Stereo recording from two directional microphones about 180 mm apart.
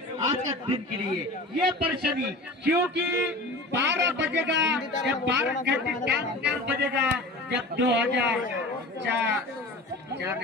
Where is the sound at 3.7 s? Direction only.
80° right.